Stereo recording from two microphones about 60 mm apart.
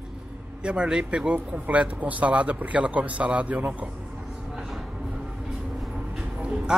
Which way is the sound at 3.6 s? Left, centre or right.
Right.